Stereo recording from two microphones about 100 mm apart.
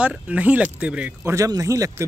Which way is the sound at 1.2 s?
30° right (ahead or behind).